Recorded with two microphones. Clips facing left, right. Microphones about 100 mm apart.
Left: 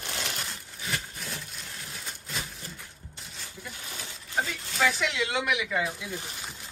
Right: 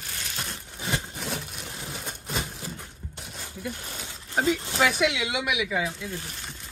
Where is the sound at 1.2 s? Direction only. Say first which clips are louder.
Right 6 dB; 70° right (ahead or behind).